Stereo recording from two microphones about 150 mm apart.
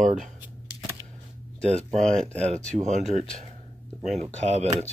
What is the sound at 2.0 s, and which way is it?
Speech, 5° left (ahead or behind).